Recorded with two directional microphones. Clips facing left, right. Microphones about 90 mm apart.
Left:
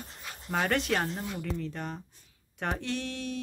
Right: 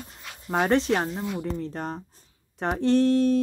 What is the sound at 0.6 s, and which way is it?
Speech, 30° right (ahead or behind).